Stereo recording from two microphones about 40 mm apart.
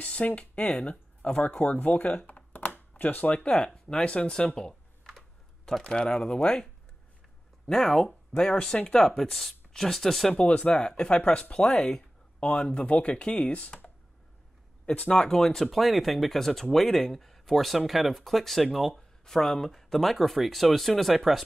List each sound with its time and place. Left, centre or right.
0.0 s speech: left
0.6 s speech: centre; by 2.0 s left
2.0 s computer keyboard: left
3.0 s speech: left
3.7 s speech: centre
4.0 s speech: left
5.9 s speech: centre
7.7 s speech: centre
10.3 s speech: left
11.5 s speech: centre
12.4 s speech: left
14.9 s speech: left
15.5 s speech: centre